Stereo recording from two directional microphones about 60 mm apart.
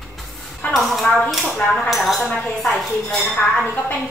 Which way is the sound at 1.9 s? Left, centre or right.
Centre.